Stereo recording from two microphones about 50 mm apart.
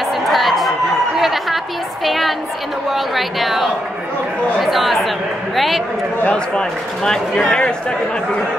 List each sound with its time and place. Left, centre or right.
0.3 s a sound: centre
2.0 s music: centre
2.9 s speech: centre
4.6 s chatter: centre
6.2 s speech: left
7.1 s speech: centre